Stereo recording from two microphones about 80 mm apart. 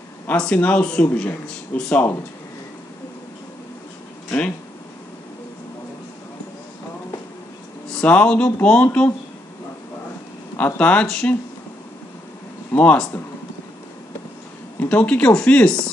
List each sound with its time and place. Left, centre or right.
0.4 s speech: centre
7.9 s speech: centre
10.6 s speech: centre
12.7 s speech: centre
14.8 s speech: left